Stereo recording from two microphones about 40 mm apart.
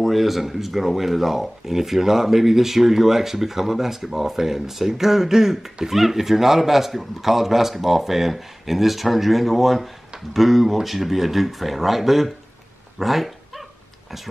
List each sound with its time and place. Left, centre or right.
0.0 s speech: centre
13.0 s dog: centre